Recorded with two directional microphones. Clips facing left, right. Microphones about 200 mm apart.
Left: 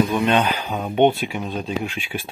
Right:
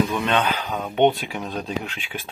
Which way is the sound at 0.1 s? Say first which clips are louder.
Left 3 dB; 15° left (ahead or behind).